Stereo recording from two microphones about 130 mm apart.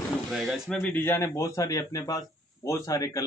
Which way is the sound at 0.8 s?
15° left (ahead or behind).